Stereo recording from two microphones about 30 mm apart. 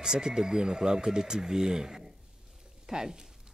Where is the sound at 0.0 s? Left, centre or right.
Right.